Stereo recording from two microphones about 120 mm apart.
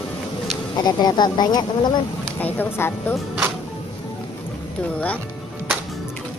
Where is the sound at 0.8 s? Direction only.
35° left (ahead or behind).